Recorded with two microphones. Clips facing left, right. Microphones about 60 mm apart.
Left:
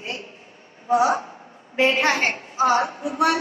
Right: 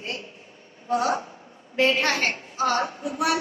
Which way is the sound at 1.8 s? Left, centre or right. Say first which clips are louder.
Left 2 dB; left.